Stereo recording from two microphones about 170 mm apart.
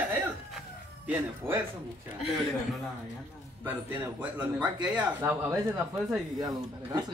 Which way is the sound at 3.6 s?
10° right (ahead or behind).